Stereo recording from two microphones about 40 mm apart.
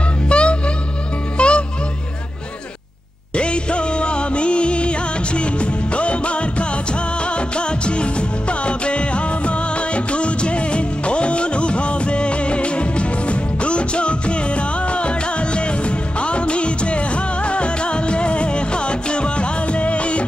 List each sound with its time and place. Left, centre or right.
0.3 s music: left
3.3 s music: left